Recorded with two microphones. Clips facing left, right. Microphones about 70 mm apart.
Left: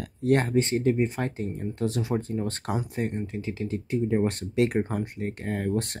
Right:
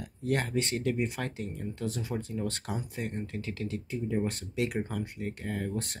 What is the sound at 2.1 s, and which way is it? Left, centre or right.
Speech, left.